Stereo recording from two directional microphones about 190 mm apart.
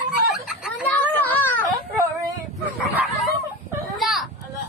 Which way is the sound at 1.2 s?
10° left (ahead or behind).